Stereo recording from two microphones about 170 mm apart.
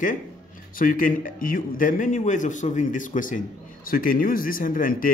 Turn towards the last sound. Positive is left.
turn(degrees=55)  # may be behind; listen again after turning